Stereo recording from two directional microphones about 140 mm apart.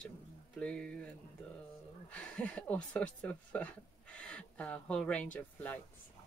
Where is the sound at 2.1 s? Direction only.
10° left (ahead or behind).